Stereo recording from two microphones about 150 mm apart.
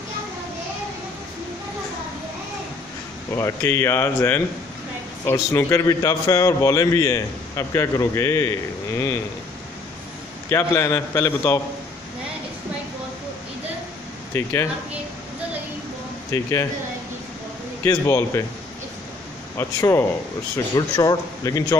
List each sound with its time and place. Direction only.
3.3 s a man's voice: 20° left (ahead or behind)
10.5 s a man's voice: 20° left (ahead or behind)
14.3 s a man's voice: 15° left (ahead or behind)
16.3 s speech: 20° left (ahead or behind)
17.8 s a man's voice: 20° left (ahead or behind)
19.5 s a man's voice: 20° left (ahead or behind)